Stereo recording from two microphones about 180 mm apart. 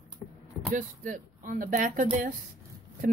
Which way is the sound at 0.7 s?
45° right (ahead or behind).